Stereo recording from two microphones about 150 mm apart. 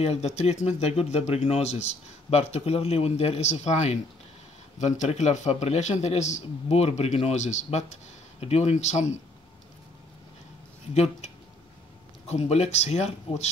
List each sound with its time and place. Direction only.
0.0 s speech: 45° left (ahead or behind)
11.0 s speech: 45° left (ahead or behind)